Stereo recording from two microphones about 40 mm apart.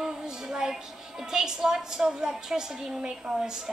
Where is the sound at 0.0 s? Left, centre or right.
Centre.